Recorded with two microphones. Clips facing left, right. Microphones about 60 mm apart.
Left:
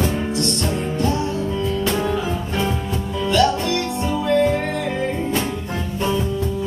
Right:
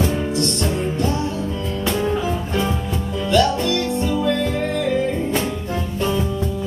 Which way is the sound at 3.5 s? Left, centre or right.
Left.